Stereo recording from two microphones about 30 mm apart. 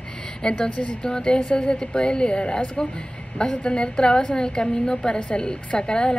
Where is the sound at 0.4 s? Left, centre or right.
Left.